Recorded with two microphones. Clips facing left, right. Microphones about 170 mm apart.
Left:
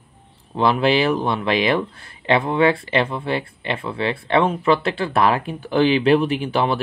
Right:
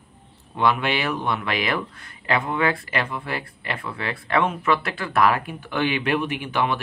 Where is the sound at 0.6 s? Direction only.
30° left (ahead or behind).